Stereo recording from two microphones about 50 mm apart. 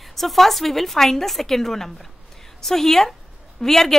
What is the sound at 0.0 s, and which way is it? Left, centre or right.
A woman's voice, centre.